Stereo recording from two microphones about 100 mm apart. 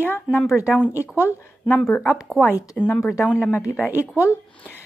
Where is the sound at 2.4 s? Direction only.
30° left (ahead or behind).